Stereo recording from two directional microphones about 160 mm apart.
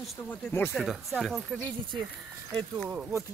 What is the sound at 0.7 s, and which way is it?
Speech, centre (ahead or behind).